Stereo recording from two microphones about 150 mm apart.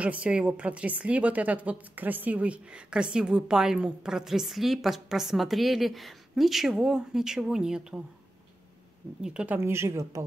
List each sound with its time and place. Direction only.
0.0 s a woman's voice: 10° right (ahead or behind)
9.2 s speech: 5° right (ahead or behind)
9.6 s speech: 15° right (ahead or behind)